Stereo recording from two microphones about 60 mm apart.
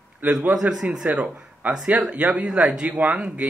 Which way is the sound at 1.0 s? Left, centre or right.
Right.